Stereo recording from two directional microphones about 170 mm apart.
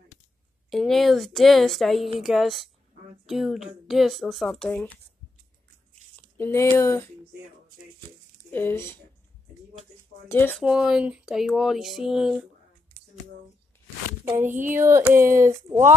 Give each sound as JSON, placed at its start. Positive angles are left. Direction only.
{"t": 0.7, "sound": "speech", "side_deg": 0}
{"t": 6.1, "sound": "a sound", "side_deg": 10}
{"t": 6.8, "sound": "speech", "side_deg": 15}
{"t": 8.4, "sound": "speech", "side_deg": 10}
{"t": 10.2, "sound": "speech", "side_deg": 10}
{"t": 10.6, "sound": "speech", "side_deg": -5}
{"t": 14.2, "sound": "speech", "side_deg": -15}